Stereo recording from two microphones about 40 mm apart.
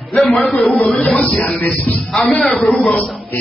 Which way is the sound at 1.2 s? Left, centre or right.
Left.